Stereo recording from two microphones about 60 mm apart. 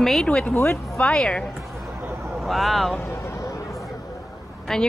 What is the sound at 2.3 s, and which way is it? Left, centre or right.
Speech, centre.